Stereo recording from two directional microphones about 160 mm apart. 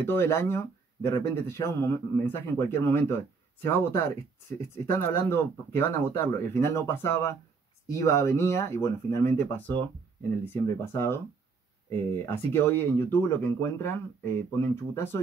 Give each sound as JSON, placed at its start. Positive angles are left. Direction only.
{"t": 0.0, "sound": "a man's voice", "side_deg": 15}
{"t": 12.3, "sound": "a man's voice", "side_deg": 15}